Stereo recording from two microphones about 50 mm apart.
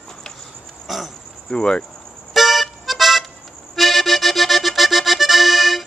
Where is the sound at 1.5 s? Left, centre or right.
Centre.